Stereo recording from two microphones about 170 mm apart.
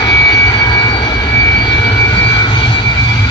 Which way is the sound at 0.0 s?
25° left (ahead or behind).